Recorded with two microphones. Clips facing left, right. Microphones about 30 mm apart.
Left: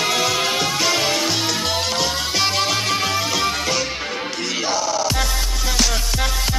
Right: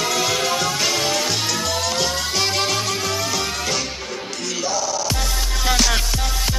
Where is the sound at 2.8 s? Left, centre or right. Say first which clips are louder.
Left 3 dB; left.